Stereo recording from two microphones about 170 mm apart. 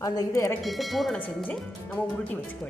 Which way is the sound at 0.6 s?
Centre (ahead or behind).